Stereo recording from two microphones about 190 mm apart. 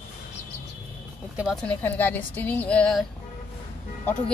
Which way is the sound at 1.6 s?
10° left (ahead or behind).